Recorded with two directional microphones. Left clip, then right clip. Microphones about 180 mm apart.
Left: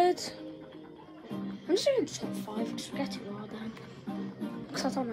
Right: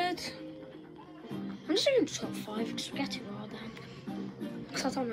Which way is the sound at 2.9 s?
10° left (ahead or behind).